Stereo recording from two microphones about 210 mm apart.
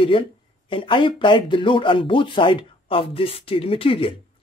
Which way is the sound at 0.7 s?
25° left (ahead or behind).